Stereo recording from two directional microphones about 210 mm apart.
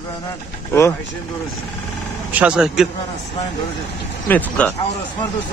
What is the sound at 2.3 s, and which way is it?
Speech, 5° right (ahead or behind).